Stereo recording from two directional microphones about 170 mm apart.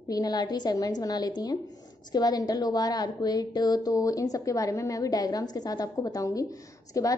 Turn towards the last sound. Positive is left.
turn(degrees=20)  # may be behind; listen again after turning